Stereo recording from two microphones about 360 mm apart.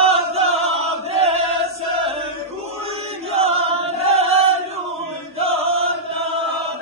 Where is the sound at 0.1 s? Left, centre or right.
Centre.